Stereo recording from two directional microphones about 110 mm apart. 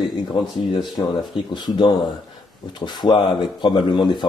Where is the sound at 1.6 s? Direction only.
45° left (ahead or behind).